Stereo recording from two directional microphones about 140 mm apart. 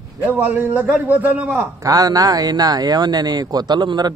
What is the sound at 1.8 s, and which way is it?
Speech, 25° right (ahead or behind).